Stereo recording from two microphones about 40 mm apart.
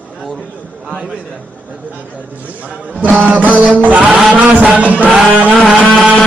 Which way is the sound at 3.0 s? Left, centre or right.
Right.